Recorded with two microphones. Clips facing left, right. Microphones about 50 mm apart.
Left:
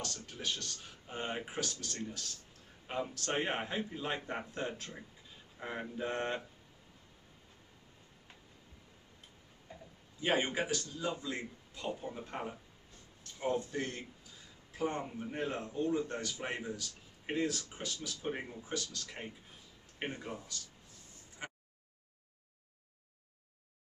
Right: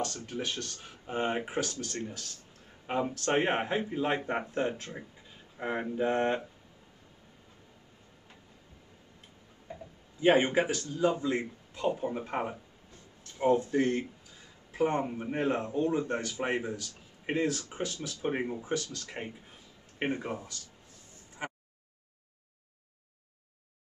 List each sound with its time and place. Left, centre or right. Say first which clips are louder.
0.0 s speech: right 7 dB; right
10.2 s speech: right 8 dB; right
21.4 s a sound: right 7 dB; right